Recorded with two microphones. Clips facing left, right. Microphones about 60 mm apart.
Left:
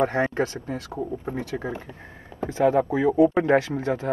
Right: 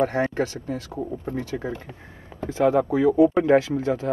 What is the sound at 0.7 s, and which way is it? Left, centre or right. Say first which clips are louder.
Speech: even; centre.